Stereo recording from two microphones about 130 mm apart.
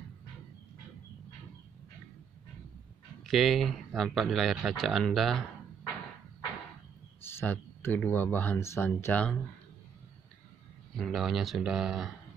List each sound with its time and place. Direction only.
3.3 s speech: centre (ahead or behind)
7.2 s speech: 15° left (ahead or behind)
11.0 s speech: centre (ahead or behind)